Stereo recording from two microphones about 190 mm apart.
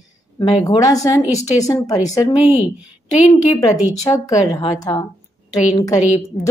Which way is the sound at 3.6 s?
20° left (ahead or behind).